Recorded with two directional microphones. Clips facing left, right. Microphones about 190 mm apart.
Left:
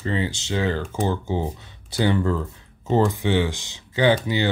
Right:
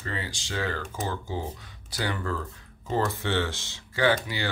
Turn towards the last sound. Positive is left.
turn(degrees=20)  # may be behind; listen again after turning